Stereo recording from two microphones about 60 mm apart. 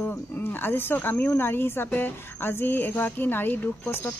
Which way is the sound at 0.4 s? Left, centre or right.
Left.